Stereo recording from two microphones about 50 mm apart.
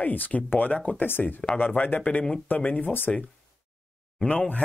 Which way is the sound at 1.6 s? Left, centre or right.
Left.